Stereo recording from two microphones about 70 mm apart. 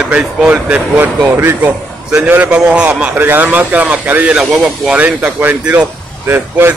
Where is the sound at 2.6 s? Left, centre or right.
Centre.